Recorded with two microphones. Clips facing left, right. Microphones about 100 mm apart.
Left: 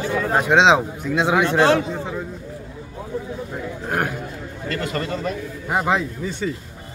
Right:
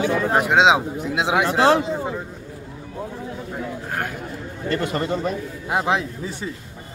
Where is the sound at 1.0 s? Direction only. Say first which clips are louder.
Left 2 dB; 25° right (ahead or behind).